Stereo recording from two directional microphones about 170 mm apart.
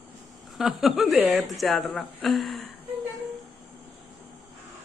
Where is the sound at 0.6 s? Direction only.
Centre (ahead or behind).